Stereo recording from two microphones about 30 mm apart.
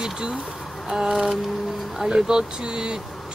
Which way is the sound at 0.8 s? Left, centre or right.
Centre.